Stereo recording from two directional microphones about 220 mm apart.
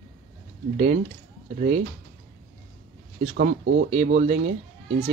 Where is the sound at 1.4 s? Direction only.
35° right (ahead or behind).